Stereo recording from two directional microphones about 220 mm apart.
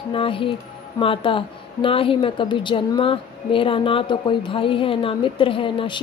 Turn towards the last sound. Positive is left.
turn(degrees=20)  # may be behind; listen again after turning